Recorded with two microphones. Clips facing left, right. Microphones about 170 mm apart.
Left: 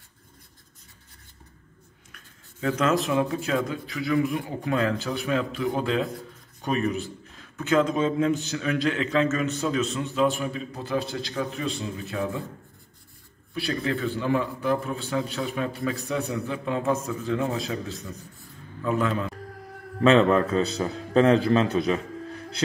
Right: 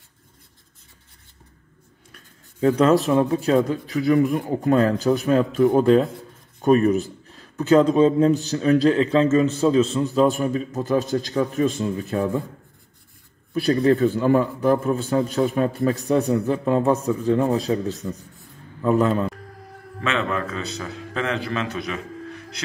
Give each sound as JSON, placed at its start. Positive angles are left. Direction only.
{"t": 2.1, "sound": "a man's voice", "side_deg": -35}
{"t": 13.5, "sound": "a man's voice", "side_deg": -40}
{"t": 20.0, "sound": "a man's voice", "side_deg": 35}